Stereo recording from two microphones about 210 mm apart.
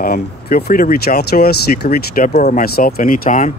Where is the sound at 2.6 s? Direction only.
45° left (ahead or behind).